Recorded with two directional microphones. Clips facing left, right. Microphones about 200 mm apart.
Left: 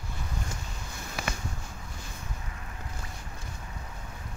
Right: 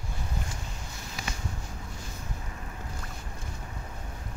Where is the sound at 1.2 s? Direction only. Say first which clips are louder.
Left 4 dB; 60° left (ahead or behind).